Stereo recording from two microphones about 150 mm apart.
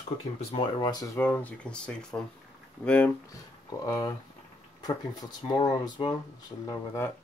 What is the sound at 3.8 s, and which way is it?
Speech, 25° left (ahead or behind).